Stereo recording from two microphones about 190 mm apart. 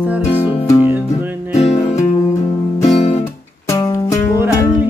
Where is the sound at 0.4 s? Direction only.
15° left (ahead or behind).